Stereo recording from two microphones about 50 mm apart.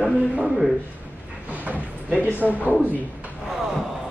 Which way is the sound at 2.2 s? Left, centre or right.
Left.